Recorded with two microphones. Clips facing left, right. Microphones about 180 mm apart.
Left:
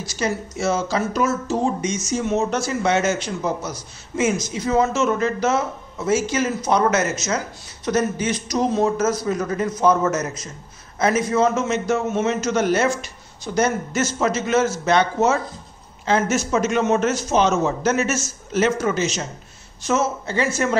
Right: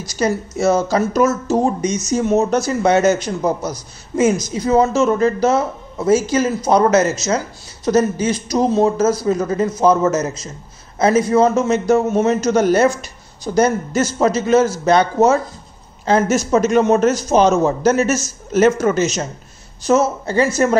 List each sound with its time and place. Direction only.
0.0 s speech: 40° right (ahead or behind)